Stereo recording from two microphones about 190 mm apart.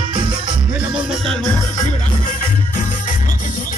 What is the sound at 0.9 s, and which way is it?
Music, centre (ahead or behind).